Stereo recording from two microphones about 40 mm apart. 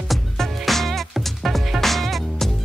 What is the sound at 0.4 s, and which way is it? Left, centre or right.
Music, centre.